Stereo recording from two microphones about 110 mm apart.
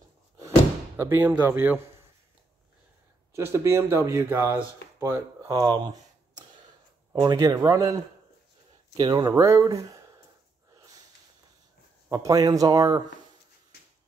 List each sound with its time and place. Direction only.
0.9 s speech: 20° right (ahead or behind)
3.3 s speech: 25° right (ahead or behind)
5.6 s a sound: 40° right (ahead or behind)
7.2 s speech: 35° right (ahead or behind)
8.9 s speech: 40° right (ahead or behind)
9.3 s speech: 25° right (ahead or behind)
12.1 s speech: 30° right (ahead or behind)